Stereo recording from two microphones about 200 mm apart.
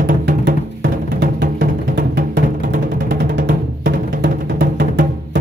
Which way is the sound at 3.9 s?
45° right (ahead or behind).